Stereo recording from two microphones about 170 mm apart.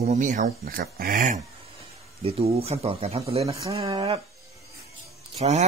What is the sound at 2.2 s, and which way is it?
Speech, 35° right (ahead or behind).